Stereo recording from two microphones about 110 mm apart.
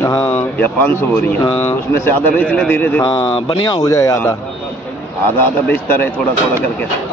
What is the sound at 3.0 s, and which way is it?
Speech, 45° left (ahead or behind).